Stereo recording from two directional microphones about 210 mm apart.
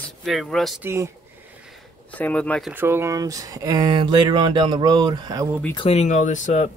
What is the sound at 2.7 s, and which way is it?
Speech, 10° right (ahead or behind).